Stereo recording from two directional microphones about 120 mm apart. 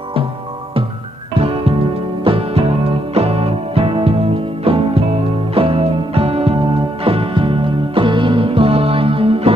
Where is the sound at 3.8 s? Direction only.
50° right (ahead or behind).